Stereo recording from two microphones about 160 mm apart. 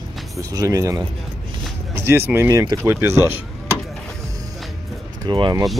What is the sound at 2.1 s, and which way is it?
Speech, 15° right (ahead or behind).